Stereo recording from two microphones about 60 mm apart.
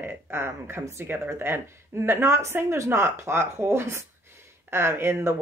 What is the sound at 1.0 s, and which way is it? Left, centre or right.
Speech, right.